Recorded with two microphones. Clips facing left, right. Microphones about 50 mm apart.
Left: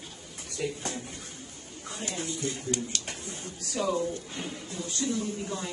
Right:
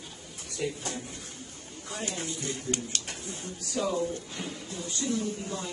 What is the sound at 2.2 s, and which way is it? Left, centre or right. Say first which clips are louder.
Speech: left 2 dB; right.